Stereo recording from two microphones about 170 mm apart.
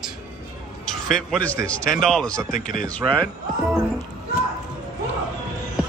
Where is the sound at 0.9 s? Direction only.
Centre (ahead or behind).